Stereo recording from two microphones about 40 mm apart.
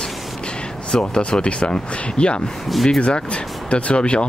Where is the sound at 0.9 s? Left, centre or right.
Centre.